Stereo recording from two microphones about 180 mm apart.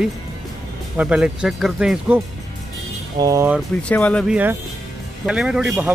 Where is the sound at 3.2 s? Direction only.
20° right (ahead or behind).